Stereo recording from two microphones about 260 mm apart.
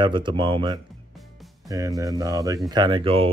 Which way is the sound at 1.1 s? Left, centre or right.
Centre.